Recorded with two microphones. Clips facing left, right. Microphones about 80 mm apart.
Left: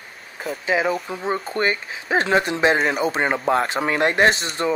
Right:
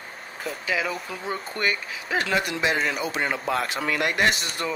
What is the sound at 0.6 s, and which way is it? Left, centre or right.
Speech, left.